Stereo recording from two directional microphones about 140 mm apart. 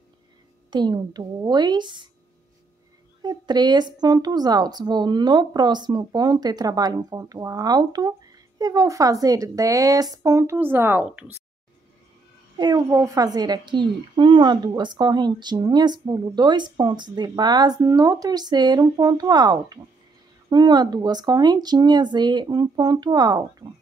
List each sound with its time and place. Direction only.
0.7 s a woman's voice: 30° right (ahead or behind)
3.2 s a woman's voice: 30° right (ahead or behind); by 11.2 s 10° right (ahead or behind)
12.5 s a woman's voice: 25° right (ahead or behind)